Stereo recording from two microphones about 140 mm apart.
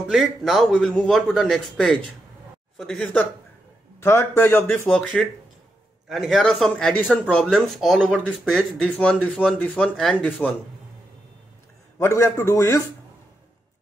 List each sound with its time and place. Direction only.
0.1 s a man's voice: centre (ahead or behind)
4.0 s a man's voice: 20° left (ahead or behind)
12.0 s a man's voice: 20° left (ahead or behind)